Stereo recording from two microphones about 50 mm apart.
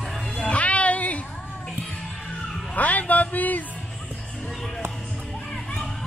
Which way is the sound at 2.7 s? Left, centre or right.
Left.